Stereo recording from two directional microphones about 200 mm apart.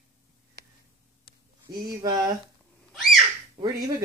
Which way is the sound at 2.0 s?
20° right (ahead or behind).